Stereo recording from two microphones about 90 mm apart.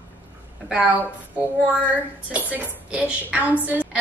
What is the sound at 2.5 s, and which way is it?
A woman's voice, 15° right (ahead or behind).